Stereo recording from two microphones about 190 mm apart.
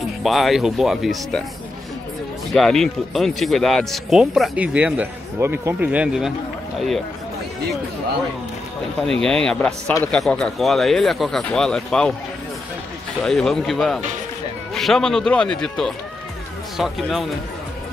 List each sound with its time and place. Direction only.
0.2 s speech: centre (ahead or behind)
2.5 s speech: centre (ahead or behind)
9.0 s speech: 5° left (ahead or behind)
13.2 s speech: 5° left (ahead or behind)